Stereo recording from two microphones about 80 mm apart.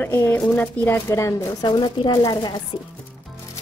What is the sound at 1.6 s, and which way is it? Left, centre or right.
Speech, left.